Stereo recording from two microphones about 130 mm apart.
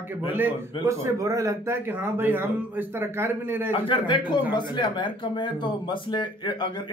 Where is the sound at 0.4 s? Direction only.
25° right (ahead or behind).